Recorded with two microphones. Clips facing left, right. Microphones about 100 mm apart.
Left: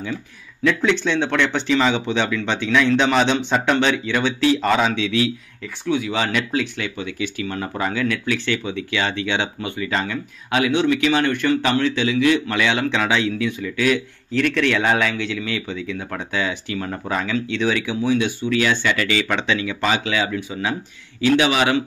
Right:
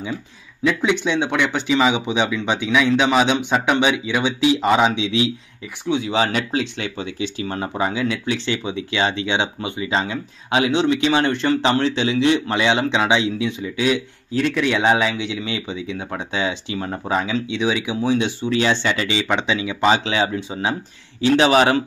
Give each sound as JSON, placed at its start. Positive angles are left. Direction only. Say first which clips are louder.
{"t": 0.7, "sound": "speech", "louder": "even", "side_deg": -10}
{"t": 21.5, "sound": "a man's voice", "louder": "right 3 dB", "side_deg": -40}